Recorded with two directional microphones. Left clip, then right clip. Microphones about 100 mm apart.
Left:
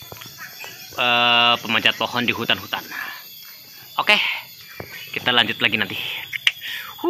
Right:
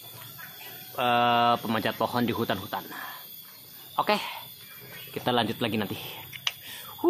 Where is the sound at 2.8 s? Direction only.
20° left (ahead or behind).